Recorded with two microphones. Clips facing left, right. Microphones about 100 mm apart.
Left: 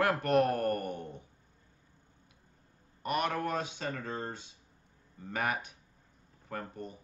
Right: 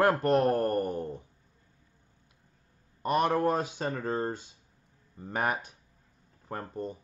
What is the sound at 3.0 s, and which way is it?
Speech, 30° right (ahead or behind).